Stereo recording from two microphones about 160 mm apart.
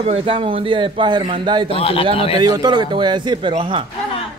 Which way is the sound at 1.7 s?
35° left (ahead or behind).